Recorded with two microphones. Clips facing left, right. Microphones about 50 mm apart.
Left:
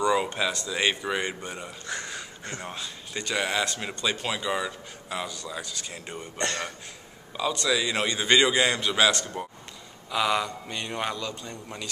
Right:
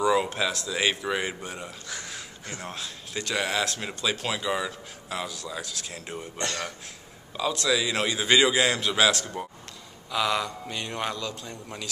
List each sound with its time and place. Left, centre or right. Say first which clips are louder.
0.0 s speech: right 1 dB; centre